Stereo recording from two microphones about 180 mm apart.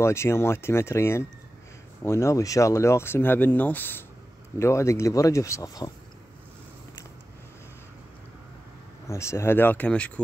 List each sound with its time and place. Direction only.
0.0 s speech: 15° left (ahead or behind)
9.0 s speech: 15° left (ahead or behind)